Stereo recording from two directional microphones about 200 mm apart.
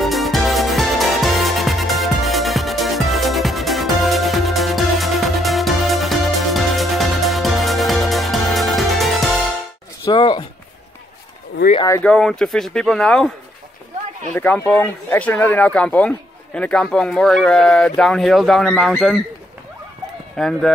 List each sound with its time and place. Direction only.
0.0 s music: centre (ahead or behind)
10.0 s a sound: 25° left (ahead or behind)
11.9 s speech: 5° left (ahead or behind)
14.3 s speech: 10° left (ahead or behind)
20.3 s speech: centre (ahead or behind)